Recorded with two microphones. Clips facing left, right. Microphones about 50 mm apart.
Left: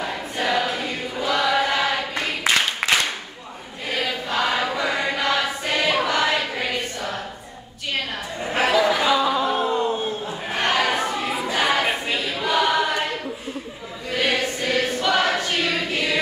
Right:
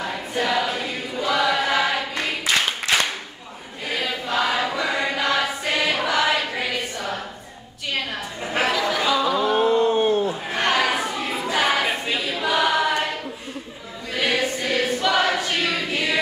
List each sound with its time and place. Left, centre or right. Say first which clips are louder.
0.0 s choir: even; centre
3.9 s chant: even; centre
4.7 s choir: even; centre
8.7 s a sound: left 3 dB; left
9.5 s a sound: right 3 dB; centre
9.8 s a sound: right 4 dB; right
10.5 s chatter: left 1 dB; centre
11.5 s choir: even; centre
14.1 s choir: even; centre